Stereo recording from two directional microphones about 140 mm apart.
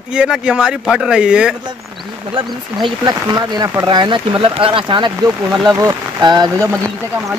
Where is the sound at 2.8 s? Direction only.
30° right (ahead or behind).